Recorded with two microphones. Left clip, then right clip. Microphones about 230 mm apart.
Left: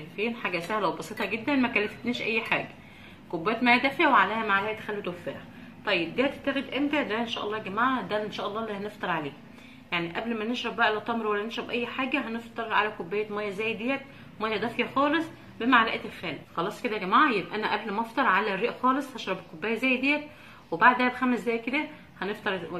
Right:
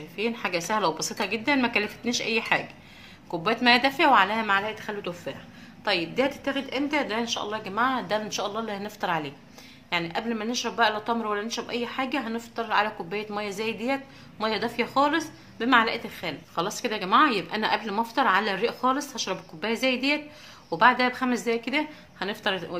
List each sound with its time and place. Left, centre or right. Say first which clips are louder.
0.1 s a woman's voice: right 2 dB; right